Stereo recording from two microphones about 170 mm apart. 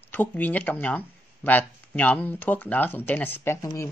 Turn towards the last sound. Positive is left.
turn(degrees=15)  # may be behind; listen again after turning